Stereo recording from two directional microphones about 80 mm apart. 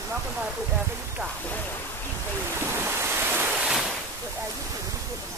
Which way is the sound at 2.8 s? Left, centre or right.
Right.